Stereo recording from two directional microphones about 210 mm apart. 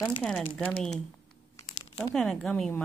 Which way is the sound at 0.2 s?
5° left (ahead or behind).